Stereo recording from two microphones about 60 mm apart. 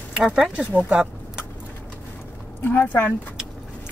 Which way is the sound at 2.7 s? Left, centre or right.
Left.